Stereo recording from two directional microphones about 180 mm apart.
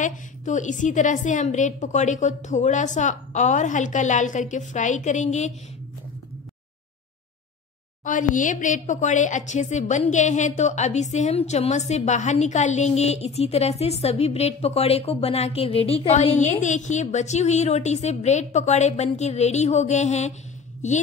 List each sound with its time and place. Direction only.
0.0 s a woman's voice: 45° left (ahead or behind)
8.0 s a woman's voice: 45° left (ahead or behind)